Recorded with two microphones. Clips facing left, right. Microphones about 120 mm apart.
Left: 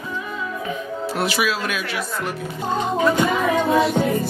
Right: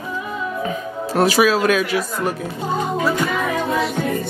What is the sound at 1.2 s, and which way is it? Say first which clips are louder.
Speech: right 8 dB; 40° right (ahead or behind).